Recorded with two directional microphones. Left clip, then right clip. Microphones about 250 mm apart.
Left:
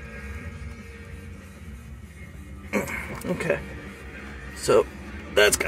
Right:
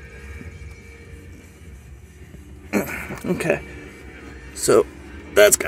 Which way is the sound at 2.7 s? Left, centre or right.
Right.